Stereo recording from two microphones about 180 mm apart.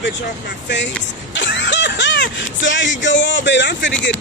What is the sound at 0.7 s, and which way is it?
Speech, 90° left.